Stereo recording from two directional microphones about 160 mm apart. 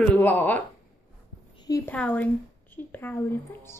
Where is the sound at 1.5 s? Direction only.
25° left (ahead or behind).